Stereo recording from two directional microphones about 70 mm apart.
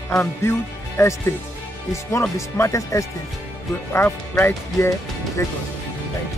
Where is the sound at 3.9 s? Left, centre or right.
Left.